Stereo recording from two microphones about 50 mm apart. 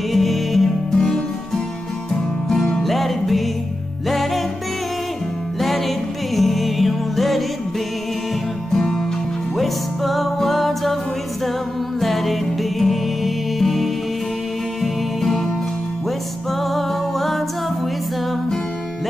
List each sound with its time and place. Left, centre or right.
0.1 s music: centre
0.9 s music: centre
5.6 s music: centre
8.7 s music: centre
12.0 s music: centre
16.6 s music: centre